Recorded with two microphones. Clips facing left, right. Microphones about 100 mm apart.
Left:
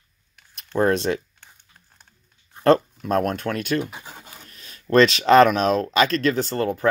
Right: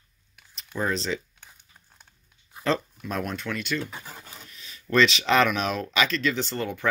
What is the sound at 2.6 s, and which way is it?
Speech, 50° left (ahead or behind).